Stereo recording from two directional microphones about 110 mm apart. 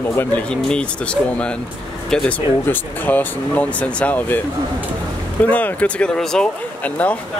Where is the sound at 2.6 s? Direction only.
15° left (ahead or behind).